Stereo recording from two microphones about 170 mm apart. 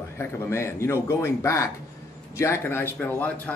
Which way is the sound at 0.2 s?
15° left (ahead or behind).